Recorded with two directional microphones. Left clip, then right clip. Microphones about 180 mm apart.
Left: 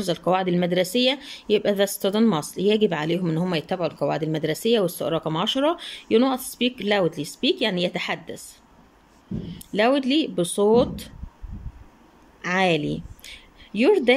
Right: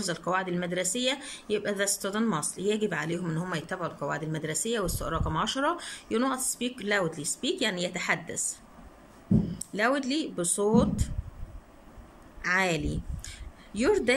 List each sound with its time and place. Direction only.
0.0 s speech: 15° left (ahead or behind)
9.6 s speech: 15° left (ahead or behind)
12.4 s a sound: 15° left (ahead or behind)